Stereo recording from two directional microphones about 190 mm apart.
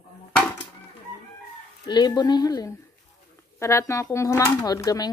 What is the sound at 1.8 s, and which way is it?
Speech, 20° left (ahead or behind).